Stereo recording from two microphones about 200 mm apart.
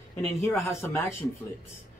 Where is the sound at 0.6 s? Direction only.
15° left (ahead or behind).